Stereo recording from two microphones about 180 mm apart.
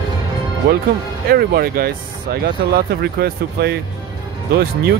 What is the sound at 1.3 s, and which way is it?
Speech, 55° right (ahead or behind).